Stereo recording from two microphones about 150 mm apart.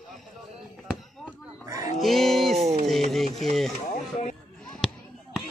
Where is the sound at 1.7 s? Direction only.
20° right (ahead or behind).